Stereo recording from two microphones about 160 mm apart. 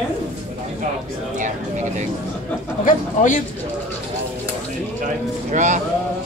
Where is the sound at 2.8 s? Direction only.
55° left (ahead or behind).